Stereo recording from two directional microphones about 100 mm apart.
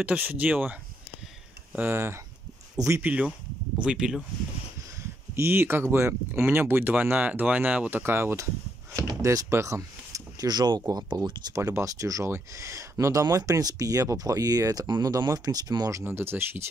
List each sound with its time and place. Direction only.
0.0 s speech: 15° right (ahead or behind)
5.3 s speech: 25° right (ahead or behind)
8.9 s door: 35° right (ahead or behind)
10.9 s speech: 40° right (ahead or behind)
16.0 s speech: 25° right (ahead or behind)